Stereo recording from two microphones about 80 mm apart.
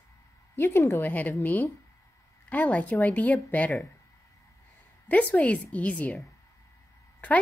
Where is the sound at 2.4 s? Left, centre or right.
Centre.